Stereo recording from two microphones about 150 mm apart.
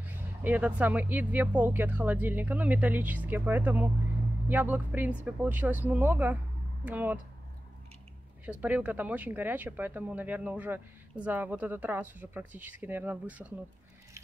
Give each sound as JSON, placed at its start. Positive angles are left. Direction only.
{"t": 0.0, "sound": "speech", "side_deg": -10}
{"t": 8.5, "sound": "speech", "side_deg": -10}